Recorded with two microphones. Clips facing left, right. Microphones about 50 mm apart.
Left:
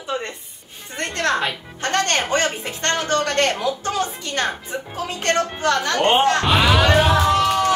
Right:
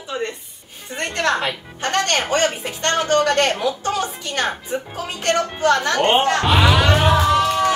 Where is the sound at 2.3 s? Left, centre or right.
Right.